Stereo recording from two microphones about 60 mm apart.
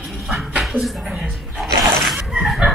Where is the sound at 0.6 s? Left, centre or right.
Centre.